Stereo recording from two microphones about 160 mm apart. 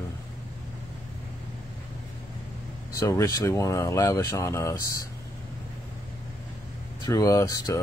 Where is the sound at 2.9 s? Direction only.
20° left (ahead or behind).